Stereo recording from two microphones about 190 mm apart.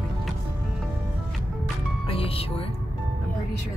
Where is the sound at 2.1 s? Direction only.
30° left (ahead or behind).